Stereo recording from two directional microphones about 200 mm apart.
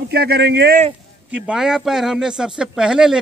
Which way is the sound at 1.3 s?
5° right (ahead or behind).